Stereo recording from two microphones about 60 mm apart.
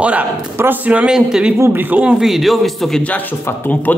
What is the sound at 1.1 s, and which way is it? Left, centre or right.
Speech, centre.